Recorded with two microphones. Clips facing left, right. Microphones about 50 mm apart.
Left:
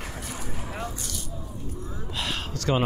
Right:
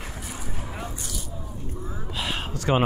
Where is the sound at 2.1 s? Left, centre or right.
Centre.